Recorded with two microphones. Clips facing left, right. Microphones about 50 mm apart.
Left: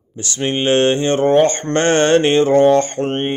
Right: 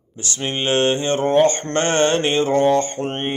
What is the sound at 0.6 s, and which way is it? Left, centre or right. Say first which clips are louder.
Mantra: left 4 dB; left.